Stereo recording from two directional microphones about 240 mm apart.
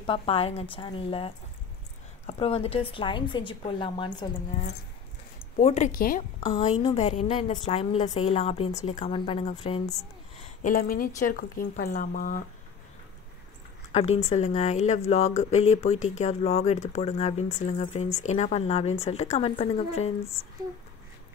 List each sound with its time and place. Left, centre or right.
0.0 s speech: left
5.6 s a woman's voice: left
6.8 s speech: left
10.9 s a woman's voice: left
13.9 s speech: left